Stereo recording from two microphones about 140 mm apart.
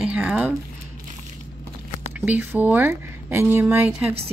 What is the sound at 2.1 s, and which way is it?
Speech, 10° right (ahead or behind).